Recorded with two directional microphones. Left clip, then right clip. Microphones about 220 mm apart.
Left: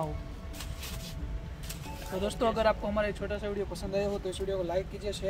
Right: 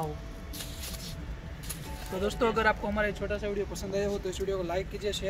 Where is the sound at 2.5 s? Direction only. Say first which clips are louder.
Right 1 dB; 15° left (ahead or behind).